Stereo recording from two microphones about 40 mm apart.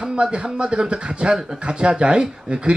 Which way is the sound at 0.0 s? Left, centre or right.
Right.